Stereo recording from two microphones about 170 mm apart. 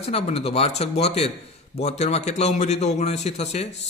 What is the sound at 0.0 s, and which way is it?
A man's voice, 35° left (ahead or behind).